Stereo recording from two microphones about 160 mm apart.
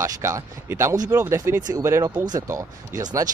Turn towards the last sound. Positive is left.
turn(degrees=-20)  # may be behind; listen again after turning